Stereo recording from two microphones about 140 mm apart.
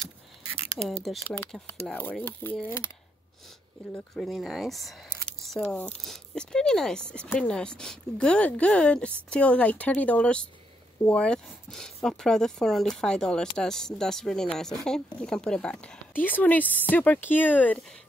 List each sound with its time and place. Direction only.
0.8 s speech: centre (ahead or behind)
3.9 s speech: 10° left (ahead or behind)